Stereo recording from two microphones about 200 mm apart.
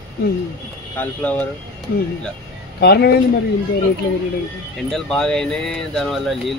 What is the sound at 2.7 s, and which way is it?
Speech, 55° left (ahead or behind).